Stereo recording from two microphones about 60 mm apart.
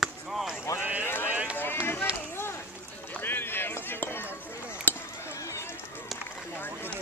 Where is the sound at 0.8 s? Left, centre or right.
Right.